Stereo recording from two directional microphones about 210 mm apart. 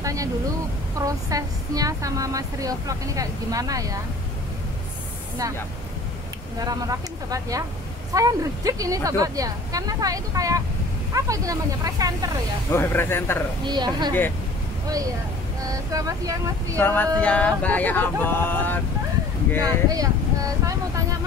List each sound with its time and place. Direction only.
0.0 s speech: 15° right (ahead or behind)
6.6 s speech: 15° right (ahead or behind)
12.7 s speech: 10° left (ahead or behind)
13.7 s speech: 20° right (ahead or behind)
15.9 s speech: 15° right (ahead or behind)
16.7 s speech: 10° left (ahead or behind)
19.6 s vehicle: 15° right (ahead or behind)